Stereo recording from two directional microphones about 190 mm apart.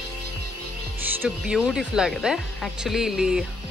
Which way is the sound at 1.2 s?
5° right (ahead or behind).